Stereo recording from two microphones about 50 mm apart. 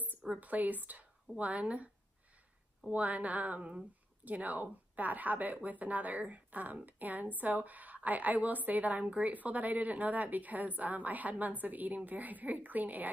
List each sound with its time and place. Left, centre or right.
0.4 s speech: right
2.9 s speech: right